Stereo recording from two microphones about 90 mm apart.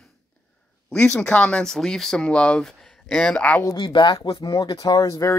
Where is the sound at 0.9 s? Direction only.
10° left (ahead or behind).